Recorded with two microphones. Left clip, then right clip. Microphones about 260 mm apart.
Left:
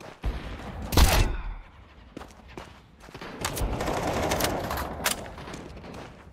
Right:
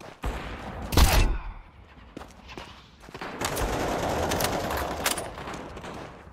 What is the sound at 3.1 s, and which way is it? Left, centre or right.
Fusillade, centre.